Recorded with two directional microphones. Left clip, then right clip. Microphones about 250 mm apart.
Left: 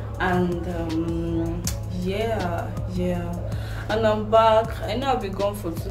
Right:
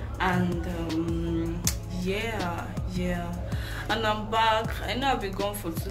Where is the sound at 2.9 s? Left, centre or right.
Centre.